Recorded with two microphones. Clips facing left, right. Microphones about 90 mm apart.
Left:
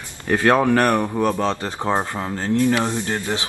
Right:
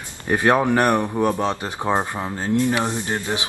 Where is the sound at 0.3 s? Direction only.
15° right (ahead or behind).